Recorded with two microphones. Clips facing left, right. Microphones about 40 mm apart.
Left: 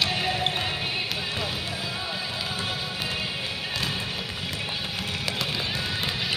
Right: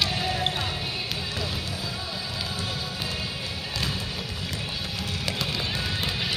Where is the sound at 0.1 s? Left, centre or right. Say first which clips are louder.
Left 1 dB; left.